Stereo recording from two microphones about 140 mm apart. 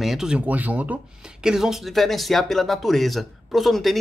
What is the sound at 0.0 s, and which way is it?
Speech, centre (ahead or behind).